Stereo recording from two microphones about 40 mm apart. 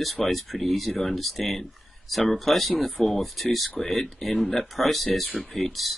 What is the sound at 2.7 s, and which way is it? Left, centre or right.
Speech, left.